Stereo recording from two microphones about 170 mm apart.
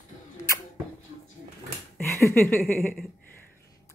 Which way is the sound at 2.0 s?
15° left (ahead or behind).